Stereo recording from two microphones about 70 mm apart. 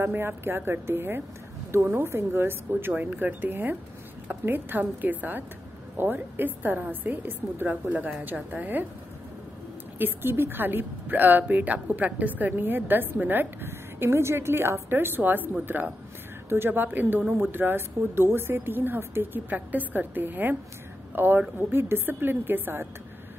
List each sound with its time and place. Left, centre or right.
0.0 s a woman's voice: right
9.9 s a woman's voice: right